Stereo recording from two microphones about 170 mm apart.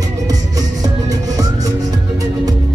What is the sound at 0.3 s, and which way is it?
Music, 20° right (ahead or behind).